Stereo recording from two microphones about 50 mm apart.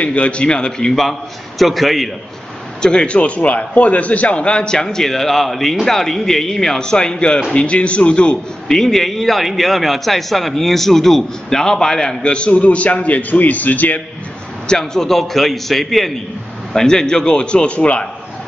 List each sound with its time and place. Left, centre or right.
0.0 s a man's voice: left; by 2.0 s centre
2.8 s a man's voice: centre; by 14.0 s left
14.7 s a man's voice: centre